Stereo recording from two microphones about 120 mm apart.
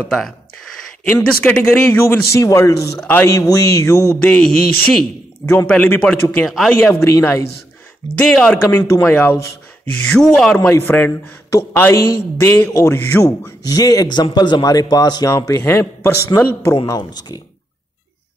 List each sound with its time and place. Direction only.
1.0 s a man's voice: 15° left (ahead or behind)
4.2 s speech: 5° left (ahead or behind)
5.4 s a man's voice: 20° left (ahead or behind)
5.7 s speech: 10° left (ahead or behind)
6.4 s speech: centre (ahead or behind)
6.8 s a man's voice: 20° left (ahead or behind)
8.2 s speech: 5° left (ahead or behind)
10.0 s a man's voice: 5° left (ahead or behind)
13.7 s a man's voice: 30° left (ahead or behind)
16.8 s speech: 35° left (ahead or behind)